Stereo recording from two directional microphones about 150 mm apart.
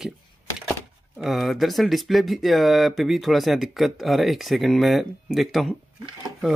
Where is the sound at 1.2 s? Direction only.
Centre (ahead or behind).